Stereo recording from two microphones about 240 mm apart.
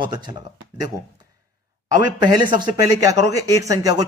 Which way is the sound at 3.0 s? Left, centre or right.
Centre.